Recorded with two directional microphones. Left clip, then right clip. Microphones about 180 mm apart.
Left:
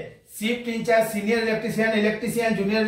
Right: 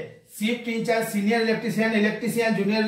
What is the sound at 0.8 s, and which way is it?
Speech, 15° left (ahead or behind).